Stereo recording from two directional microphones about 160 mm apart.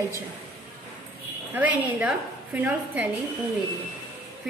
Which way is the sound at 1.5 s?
10° right (ahead or behind).